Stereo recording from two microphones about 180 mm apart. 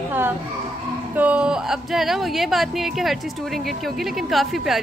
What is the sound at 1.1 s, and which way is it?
Speech, 5° right (ahead or behind).